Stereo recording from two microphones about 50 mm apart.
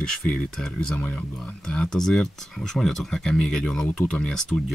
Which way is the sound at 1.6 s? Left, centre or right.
Centre.